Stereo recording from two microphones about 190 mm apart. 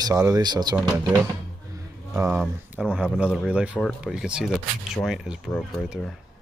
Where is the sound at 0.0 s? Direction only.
20° right (ahead or behind); by 6.1 s centre (ahead or behind).